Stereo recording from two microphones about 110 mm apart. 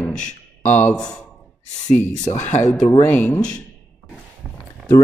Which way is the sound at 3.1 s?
15° left (ahead or behind).